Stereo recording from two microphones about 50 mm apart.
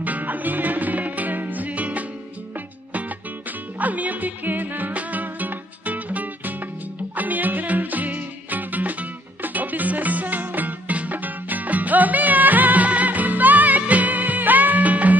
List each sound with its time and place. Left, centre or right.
0.0 s music: right